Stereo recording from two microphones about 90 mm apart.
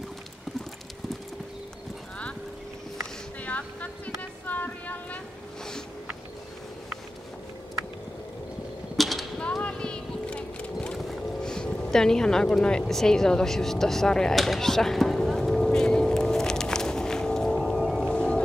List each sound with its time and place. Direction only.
3.4 s a sound: 15° left (ahead or behind)
8.9 s mechanisms: centre (ahead or behind)
9.4 s vehicle: 10° left (ahead or behind)
11.0 s music: 5° left (ahead or behind)